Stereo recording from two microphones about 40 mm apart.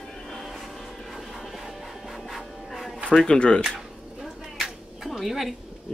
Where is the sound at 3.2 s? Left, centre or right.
Left.